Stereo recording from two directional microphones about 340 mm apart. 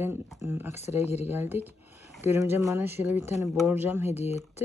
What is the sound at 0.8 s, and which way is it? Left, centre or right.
Speech, centre.